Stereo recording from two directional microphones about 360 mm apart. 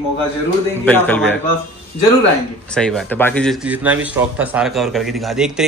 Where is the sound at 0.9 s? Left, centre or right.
Centre.